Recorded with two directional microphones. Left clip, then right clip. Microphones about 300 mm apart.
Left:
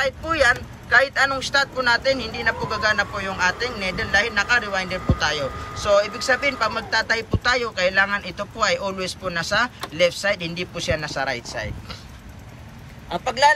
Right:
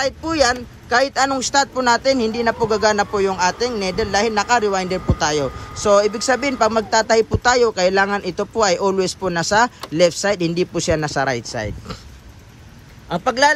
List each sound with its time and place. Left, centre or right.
0.0 s speech: right
13.1 s speech: right